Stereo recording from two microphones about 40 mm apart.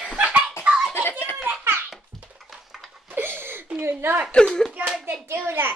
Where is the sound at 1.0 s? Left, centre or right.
Left.